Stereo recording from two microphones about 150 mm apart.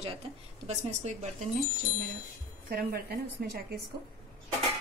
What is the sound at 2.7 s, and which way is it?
A woman's voice, 90° right.